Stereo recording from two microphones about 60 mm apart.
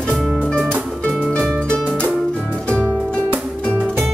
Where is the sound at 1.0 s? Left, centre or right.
Centre.